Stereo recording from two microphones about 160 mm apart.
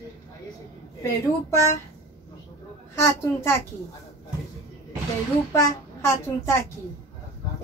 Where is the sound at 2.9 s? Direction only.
15° left (ahead or behind).